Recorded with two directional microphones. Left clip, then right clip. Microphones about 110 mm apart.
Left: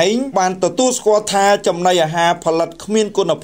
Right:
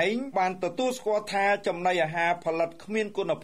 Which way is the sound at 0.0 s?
30° left (ahead or behind).